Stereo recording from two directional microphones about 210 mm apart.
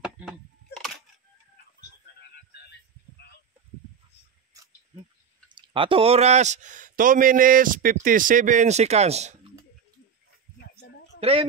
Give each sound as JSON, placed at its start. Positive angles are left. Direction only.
{"t": 0.0, "sound": "a sound", "side_deg": 0}
{"t": 5.5, "sound": "speech", "side_deg": -20}
{"t": 11.1, "sound": "speech", "side_deg": -30}